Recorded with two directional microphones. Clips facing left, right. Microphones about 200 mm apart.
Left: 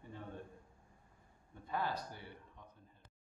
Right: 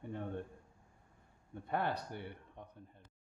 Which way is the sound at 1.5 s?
60° right (ahead or behind).